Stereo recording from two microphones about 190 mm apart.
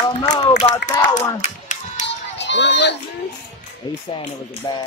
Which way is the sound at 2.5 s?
65° left (ahead or behind).